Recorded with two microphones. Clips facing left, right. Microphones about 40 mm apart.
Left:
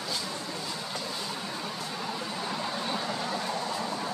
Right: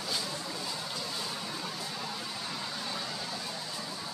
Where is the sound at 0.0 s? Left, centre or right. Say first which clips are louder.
Left 1 dB; centre.